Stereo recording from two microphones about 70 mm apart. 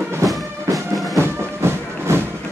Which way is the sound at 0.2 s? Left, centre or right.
Right.